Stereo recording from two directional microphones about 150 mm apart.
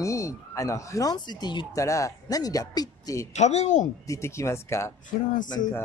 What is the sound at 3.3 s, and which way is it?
Speech, 50° left (ahead or behind).